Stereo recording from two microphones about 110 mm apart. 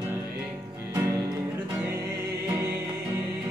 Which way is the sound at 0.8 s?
25° right (ahead or behind).